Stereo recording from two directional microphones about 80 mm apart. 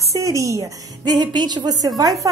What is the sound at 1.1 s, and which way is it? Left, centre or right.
Speech, right.